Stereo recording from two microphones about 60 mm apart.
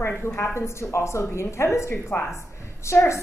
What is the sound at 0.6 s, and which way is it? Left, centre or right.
A woman's voice, left.